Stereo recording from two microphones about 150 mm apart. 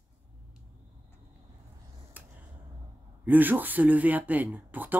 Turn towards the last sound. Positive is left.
turn(degrees=-10)  # may be behind; listen again after turning